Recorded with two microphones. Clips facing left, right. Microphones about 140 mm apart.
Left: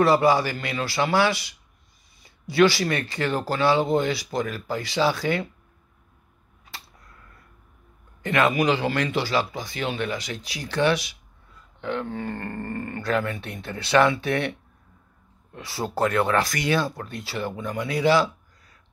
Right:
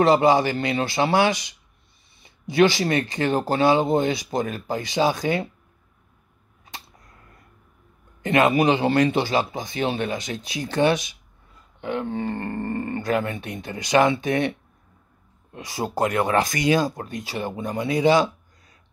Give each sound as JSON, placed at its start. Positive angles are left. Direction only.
{"t": 0.0, "sound": "speech", "side_deg": -20}
{"t": 8.2, "sound": "speech", "side_deg": -20}
{"t": 15.5, "sound": "speech", "side_deg": -15}